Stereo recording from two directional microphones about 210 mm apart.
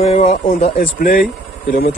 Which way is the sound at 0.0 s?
30° left (ahead or behind).